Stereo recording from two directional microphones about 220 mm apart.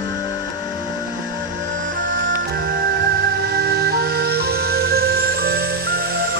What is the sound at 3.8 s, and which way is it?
Music, 45° right (ahead or behind).